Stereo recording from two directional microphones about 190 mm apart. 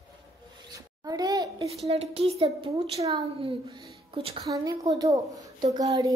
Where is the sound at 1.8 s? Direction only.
30° right (ahead or behind).